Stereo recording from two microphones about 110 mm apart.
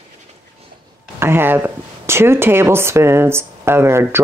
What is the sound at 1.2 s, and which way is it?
Speech, 20° right (ahead or behind).